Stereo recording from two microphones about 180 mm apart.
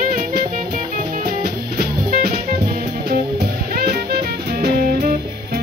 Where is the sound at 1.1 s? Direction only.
60° right (ahead or behind).